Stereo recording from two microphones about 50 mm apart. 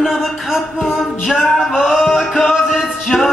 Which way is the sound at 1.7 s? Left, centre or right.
Centre.